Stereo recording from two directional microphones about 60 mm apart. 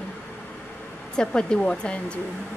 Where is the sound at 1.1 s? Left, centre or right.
Centre.